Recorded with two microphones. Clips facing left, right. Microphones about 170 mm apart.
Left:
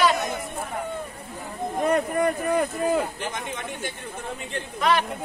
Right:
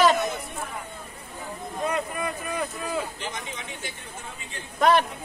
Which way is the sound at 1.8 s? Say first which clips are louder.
Left 6 dB; 55° left (ahead or behind).